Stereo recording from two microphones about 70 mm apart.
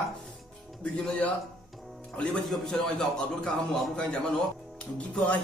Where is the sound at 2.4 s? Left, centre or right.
Centre.